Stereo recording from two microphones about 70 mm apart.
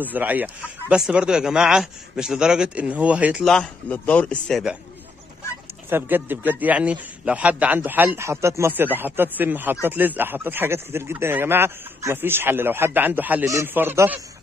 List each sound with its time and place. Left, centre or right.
0.0 s a man's voice: right
3.9 s speech: left
5.9 s a man's voice: right
8.2 s speech: right
8.7 s a man's voice: right